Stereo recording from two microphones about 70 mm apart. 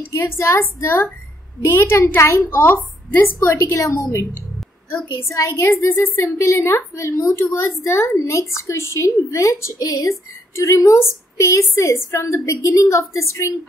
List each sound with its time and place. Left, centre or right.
0.1 s a woman's voice: left
3.4 s a woman's voice: left
5.3 s a woman's voice: left
7.3 s a woman's voice: left